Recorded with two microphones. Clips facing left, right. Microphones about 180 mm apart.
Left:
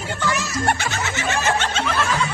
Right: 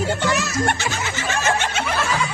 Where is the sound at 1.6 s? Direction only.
10° right (ahead or behind).